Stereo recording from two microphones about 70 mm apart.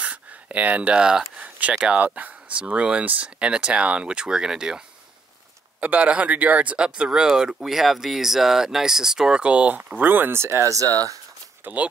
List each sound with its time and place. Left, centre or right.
0.0 s speech: centre; by 10.7 s right
11.6 s speech: right